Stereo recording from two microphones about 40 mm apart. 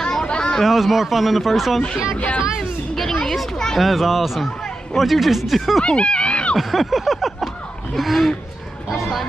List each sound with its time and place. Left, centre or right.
0.0 s a sound: centre
0.7 s speech: centre
3.0 s speech: centre
3.7 s speech: centre
5.9 s a sound: left
6.5 s speech: centre